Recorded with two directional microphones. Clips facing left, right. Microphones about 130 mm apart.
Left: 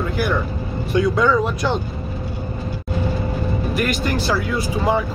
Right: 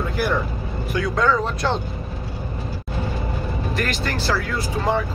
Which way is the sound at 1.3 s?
Centre (ahead or behind).